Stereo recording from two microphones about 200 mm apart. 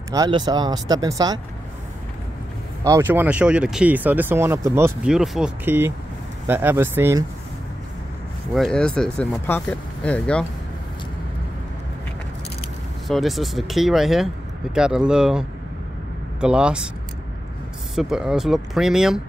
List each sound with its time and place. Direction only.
0.1 s speech: 20° right (ahead or behind)
2.8 s speech: 15° right (ahead or behind)
8.5 s speech: centre (ahead or behind)
13.1 s speech: centre (ahead or behind)
17.9 s speech: 5° right (ahead or behind)